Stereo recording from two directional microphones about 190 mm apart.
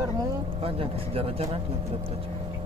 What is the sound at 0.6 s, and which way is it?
Speech, 30° right (ahead or behind).